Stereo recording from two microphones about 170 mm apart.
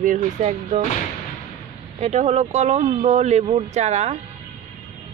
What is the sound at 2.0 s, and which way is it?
A woman's voice, 40° right (ahead or behind).